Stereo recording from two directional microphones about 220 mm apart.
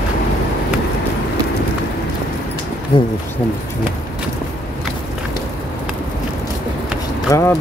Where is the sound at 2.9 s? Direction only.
20° left (ahead or behind).